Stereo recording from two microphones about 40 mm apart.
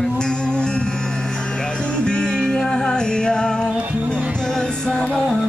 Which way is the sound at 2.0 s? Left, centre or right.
Left.